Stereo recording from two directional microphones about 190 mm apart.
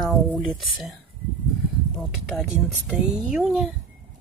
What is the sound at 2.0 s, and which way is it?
Speech, centre (ahead or behind).